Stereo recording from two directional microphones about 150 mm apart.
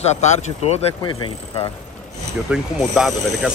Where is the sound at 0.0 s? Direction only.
50° left (ahead or behind).